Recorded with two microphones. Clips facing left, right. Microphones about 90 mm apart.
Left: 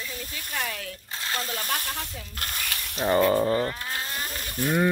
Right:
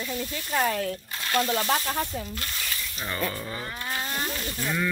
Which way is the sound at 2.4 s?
60° left (ahead or behind).